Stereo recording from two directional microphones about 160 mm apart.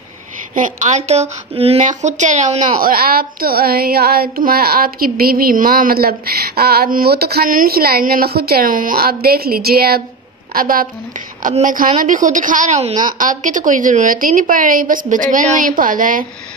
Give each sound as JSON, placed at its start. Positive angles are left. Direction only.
{"t": 0.6, "sound": "a woman's voice", "side_deg": -50}
{"t": 10.5, "sound": "a woman's voice", "side_deg": -60}